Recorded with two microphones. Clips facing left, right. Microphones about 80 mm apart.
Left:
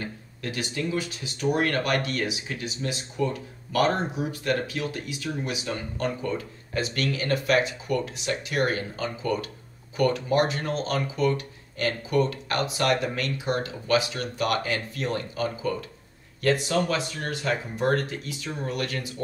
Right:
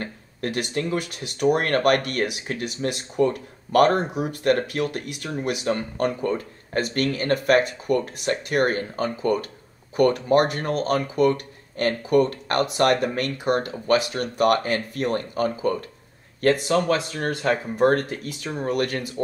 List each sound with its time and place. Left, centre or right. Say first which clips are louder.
0.0 s speech: right 5 dB; right